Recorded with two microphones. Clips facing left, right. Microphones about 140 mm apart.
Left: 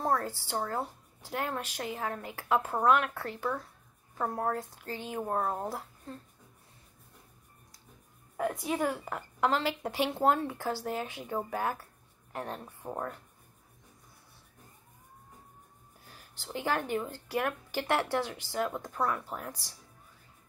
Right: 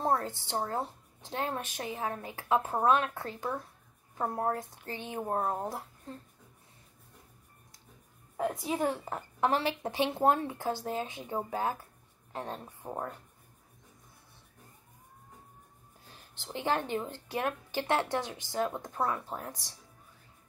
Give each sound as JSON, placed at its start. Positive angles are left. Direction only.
{"t": 0.0, "sound": "speech", "side_deg": -20}
{"t": 8.4, "sound": "a woman's voice", "side_deg": -5}
{"t": 8.8, "sound": "speech", "side_deg": -25}
{"t": 16.1, "sound": "speech", "side_deg": -20}